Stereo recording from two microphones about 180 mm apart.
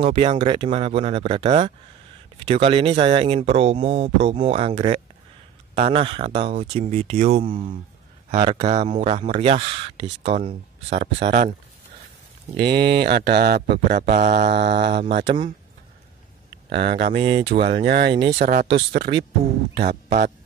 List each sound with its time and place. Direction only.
0.0 s speech: 30° right (ahead or behind)
8.4 s speech: 25° right (ahead or behind)
8.6 s speech: 40° right (ahead or behind)
10.9 s speech: 65° right (ahead or behind)
12.5 s speech: 65° right (ahead or behind)
13.7 s mantra: 55° right (ahead or behind)
14.5 s mantra: 70° right (ahead or behind)
16.6 s mantra: 65° right (ahead or behind)
17.1 s speech: 30° right (ahead or behind)
17.7 s mantra: 65° right (ahead or behind)
19.7 s speech: 65° right (ahead or behind)